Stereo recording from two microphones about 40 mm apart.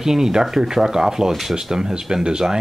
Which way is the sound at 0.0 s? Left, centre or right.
Centre.